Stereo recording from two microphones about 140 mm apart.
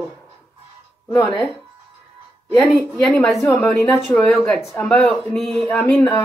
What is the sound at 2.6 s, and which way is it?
Speech, 5° left (ahead or behind).